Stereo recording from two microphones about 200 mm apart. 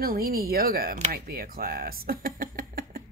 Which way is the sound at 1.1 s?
50° right (ahead or behind).